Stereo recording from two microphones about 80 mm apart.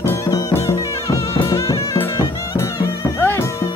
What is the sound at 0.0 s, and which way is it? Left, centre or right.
Music, left.